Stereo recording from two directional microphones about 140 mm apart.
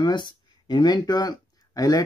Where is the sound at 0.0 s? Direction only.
30° left (ahead or behind).